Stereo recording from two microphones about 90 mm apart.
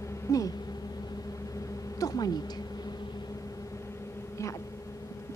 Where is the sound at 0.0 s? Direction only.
35° left (ahead or behind).